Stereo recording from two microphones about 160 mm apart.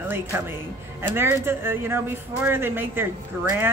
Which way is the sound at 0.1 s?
15° right (ahead or behind).